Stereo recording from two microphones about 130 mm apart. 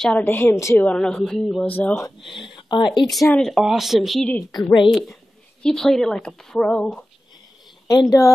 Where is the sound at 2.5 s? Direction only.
35° left (ahead or behind).